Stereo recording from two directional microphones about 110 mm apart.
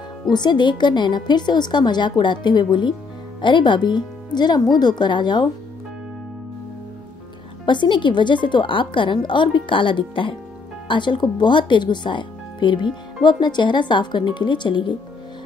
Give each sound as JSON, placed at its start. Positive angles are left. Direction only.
{"t": 0.3, "sound": "speech", "side_deg": 40}
{"t": 7.6, "sound": "speech", "side_deg": 45}